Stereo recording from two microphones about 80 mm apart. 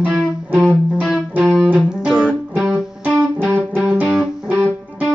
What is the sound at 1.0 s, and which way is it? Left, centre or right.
Music, centre.